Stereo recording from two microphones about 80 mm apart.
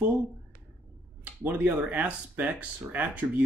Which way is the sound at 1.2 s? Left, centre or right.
Centre.